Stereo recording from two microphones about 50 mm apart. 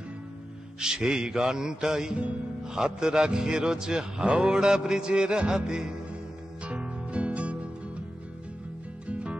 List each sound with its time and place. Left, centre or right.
0.7 s a man's voice: centre
6.6 s music: right
9.0 s music: right